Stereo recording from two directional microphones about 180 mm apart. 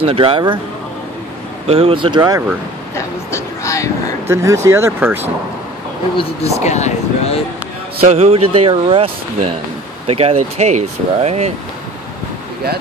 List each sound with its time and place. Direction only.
0.0 s speech: 30° right (ahead or behind)
1.7 s speech: 30° right (ahead or behind)
3.3 s speech: 15° left (ahead or behind)
4.3 s speech: 15° right (ahead or behind)
6.6 s speech: 40° left (ahead or behind)
8.0 s speech: 35° right (ahead or behind)